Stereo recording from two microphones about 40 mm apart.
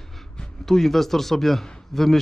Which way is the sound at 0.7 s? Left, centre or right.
Centre.